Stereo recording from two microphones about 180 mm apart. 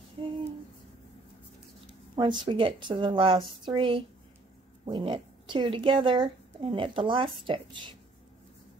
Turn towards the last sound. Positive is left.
turn(degrees=-30)  # may be behind; listen again after turning